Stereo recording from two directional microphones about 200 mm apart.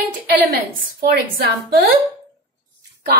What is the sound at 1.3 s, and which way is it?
Speech, 45° right (ahead or behind).